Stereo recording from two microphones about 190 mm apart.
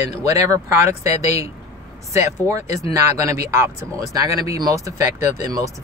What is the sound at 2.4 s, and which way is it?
Speech, 15° right (ahead or behind).